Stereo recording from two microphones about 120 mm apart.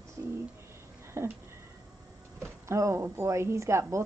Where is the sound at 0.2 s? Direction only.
25° right (ahead or behind).